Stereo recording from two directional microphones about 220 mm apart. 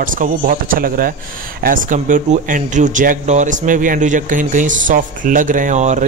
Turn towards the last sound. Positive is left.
turn(degrees=-35)  # may be behind; listen again after turning